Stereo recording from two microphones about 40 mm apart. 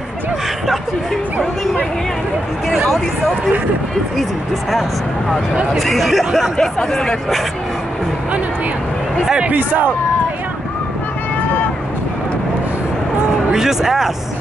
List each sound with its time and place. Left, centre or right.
4.2 s speech: centre
9.4 s speech: right
13.5 s speech: centre